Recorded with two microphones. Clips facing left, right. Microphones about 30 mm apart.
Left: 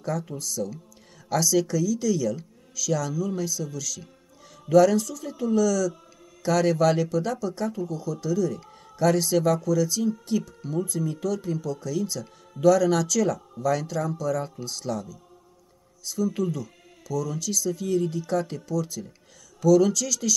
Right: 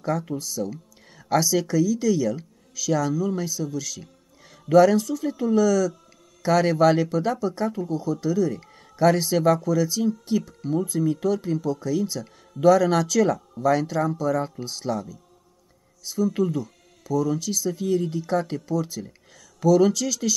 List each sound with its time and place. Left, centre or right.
0.0 s speech: centre